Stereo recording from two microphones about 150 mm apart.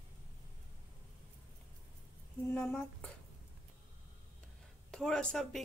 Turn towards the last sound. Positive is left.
turn(degrees=5)  # may be behind; listen again after turning